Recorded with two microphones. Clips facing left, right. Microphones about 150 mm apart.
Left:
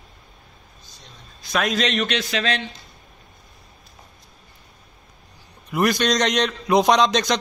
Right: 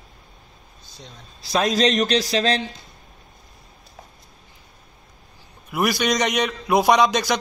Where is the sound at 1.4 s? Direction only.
30° right (ahead or behind).